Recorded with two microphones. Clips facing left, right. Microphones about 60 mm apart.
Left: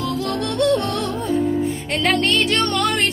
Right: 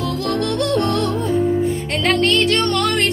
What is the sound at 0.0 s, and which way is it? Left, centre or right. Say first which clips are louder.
Music: right 2 dB; centre.